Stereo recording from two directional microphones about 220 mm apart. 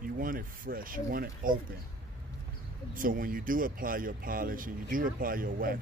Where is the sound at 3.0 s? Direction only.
40° right (ahead or behind).